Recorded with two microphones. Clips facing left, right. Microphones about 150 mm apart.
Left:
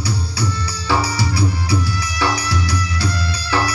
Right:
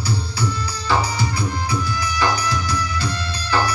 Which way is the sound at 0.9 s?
85° left.